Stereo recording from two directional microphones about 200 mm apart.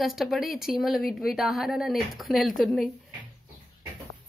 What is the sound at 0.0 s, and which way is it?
Speech, centre (ahead or behind).